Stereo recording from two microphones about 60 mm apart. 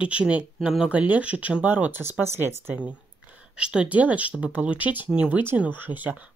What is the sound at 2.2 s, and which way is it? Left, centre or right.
Speech, right.